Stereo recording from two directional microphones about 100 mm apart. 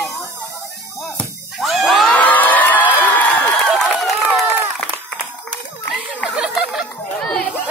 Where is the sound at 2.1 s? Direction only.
15° left (ahead or behind).